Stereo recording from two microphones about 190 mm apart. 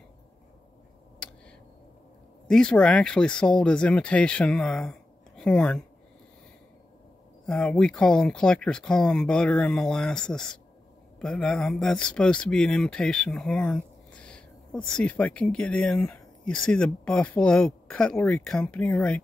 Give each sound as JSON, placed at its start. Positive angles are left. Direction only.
{"t": 2.4, "sound": "speech", "side_deg": 5}
{"t": 7.4, "sound": "speech", "side_deg": 5}